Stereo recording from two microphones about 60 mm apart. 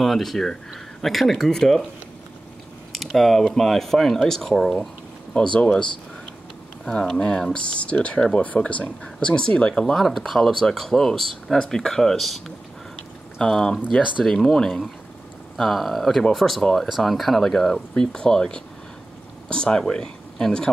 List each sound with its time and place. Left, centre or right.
0.0 s speech: centre
3.1 s speech: centre
5.3 s speech: centre
9.9 s speech: centre